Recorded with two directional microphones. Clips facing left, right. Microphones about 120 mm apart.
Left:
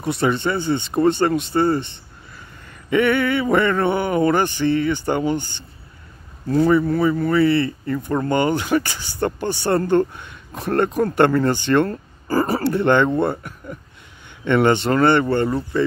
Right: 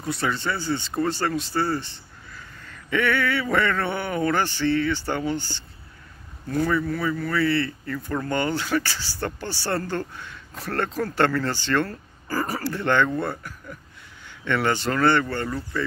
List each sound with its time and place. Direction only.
0.0 s speech: 20° left (ahead or behind)
6.4 s speech: 30° left (ahead or behind)